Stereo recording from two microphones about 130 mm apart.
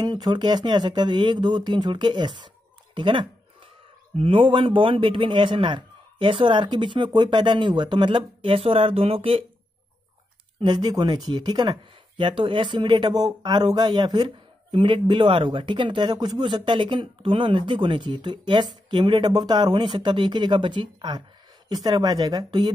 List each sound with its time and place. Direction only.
0.0 s speech: 35° right (ahead or behind)
10.6 s speech: 35° right (ahead or behind)